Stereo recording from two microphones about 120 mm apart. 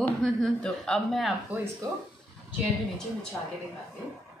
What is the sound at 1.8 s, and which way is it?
Speech, 30° right (ahead or behind).